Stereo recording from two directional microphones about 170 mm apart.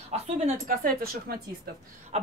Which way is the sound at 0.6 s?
60° right (ahead or behind).